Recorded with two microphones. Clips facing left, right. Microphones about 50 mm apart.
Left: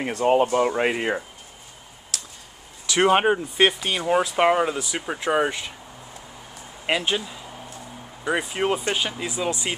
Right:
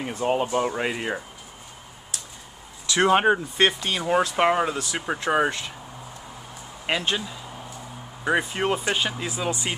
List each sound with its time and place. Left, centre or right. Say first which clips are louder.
0.1 s speech: left 5 dB; left
0.7 s speech: left 4 dB; left
2.1 s a sound: left 3 dB; left
2.9 s speech: left 1 dB; left
3.3 s speech: left 1 dB; centre
6.9 s speech: left 2 dB; centre